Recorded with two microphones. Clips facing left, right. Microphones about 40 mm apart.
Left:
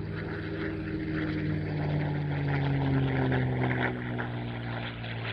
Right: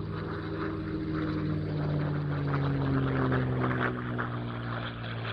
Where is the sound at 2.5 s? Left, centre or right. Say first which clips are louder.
Left 1 dB; left.